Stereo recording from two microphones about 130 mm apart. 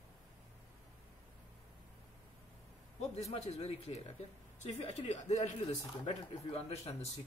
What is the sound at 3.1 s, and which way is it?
A man's voice, 55° left (ahead or behind).